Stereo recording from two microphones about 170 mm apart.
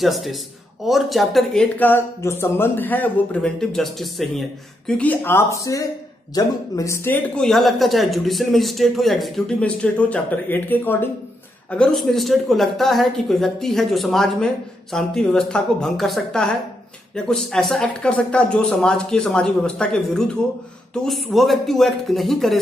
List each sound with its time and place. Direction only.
0.0 s speech: centre (ahead or behind); by 7.2 s 20° left (ahead or behind)
7.3 s speech: centre (ahead or behind)